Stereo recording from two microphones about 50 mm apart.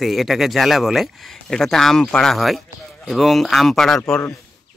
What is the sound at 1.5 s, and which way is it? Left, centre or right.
Speech, centre.